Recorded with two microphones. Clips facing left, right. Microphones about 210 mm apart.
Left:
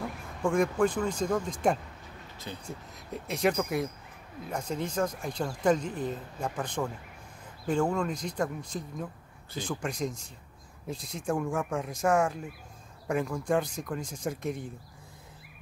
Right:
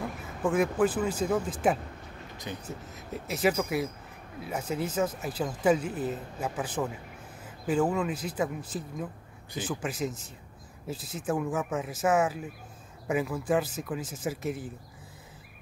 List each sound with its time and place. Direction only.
0.2 s speech: 5° right (ahead or behind)
2.3 s speech: 15° right (ahead or behind)
2.6 s speech: 5° right (ahead or behind)